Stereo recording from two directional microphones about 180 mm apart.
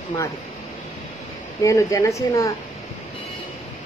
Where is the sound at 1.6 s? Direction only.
15° left (ahead or behind).